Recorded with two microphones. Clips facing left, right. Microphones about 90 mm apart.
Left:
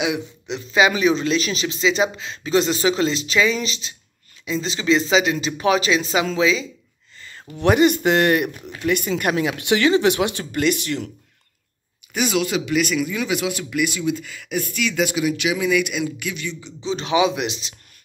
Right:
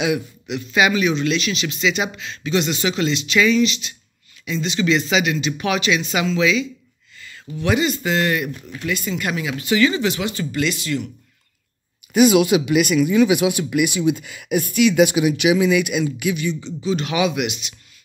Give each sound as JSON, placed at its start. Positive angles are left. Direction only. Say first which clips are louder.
{"t": 0.0, "sound": "a man's voice", "louder": "right 2 dB", "side_deg": 25}
{"t": 7.5, "sound": "speech", "louder": "left 4 dB", "side_deg": 55}
{"t": 12.1, "sound": "speech", "louder": "right 8 dB", "side_deg": -5}
{"t": 15.7, "sound": "speech", "louder": "right 2 dB", "side_deg": -5}
{"t": 16.8, "sound": "speech", "louder": "left 1 dB", "side_deg": 25}